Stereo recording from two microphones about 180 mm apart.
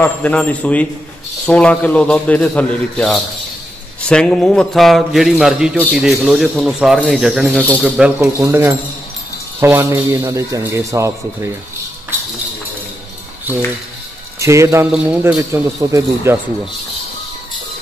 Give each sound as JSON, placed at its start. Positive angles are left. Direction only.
{"t": 0.0, "sound": "a man's voice", "side_deg": 5}
{"t": 14.4, "sound": "speech", "side_deg": -15}